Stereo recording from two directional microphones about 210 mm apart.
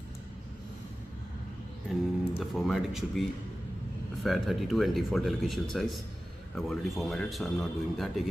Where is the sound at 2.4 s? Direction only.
Centre (ahead or behind).